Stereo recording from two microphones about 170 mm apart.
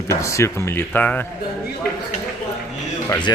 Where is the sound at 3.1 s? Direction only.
25° left (ahead or behind).